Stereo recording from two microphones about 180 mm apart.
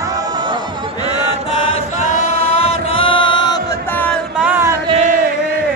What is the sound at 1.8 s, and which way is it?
Chant, 35° left (ahead or behind).